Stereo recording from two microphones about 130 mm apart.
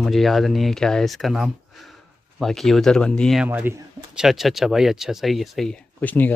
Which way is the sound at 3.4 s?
15° right (ahead or behind).